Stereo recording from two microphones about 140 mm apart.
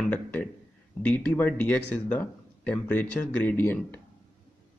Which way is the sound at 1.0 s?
15° left (ahead or behind).